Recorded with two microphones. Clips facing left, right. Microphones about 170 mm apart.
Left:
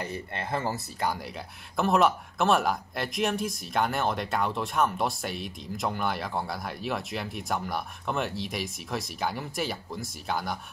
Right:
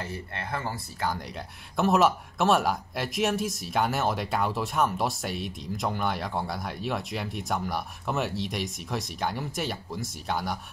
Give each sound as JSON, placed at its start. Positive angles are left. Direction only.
{"t": 0.0, "sound": "speech", "side_deg": 20}
{"t": 1.8, "sound": "speech", "side_deg": 0}